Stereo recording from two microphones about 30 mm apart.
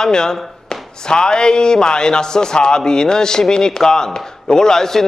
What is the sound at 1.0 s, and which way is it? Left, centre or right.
A man's voice, left.